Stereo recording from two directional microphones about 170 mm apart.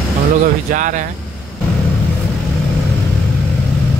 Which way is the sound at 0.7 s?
50° right (ahead or behind).